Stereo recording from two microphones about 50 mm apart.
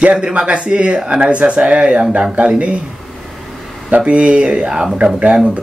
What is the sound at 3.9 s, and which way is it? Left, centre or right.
Speech, right.